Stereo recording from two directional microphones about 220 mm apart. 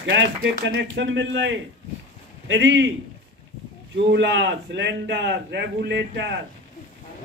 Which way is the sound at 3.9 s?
55° right (ahead or behind).